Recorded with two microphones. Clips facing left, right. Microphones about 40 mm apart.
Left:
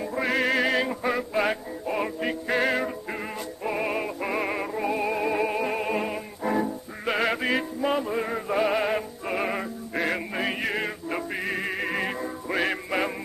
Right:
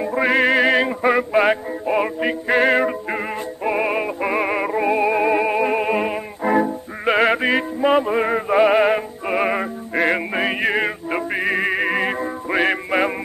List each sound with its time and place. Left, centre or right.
0.0 s music: right
10.0 s male singing: right